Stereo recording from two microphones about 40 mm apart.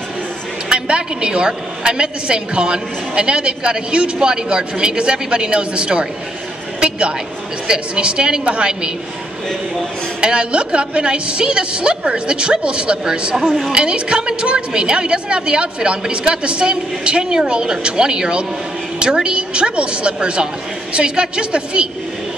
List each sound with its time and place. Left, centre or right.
0.7 s a woman's voice: right
10.2 s a woman's voice: right
13.4 s a woman's voice: centre
13.7 s a woman's voice: right
19.5 s a woman's voice: right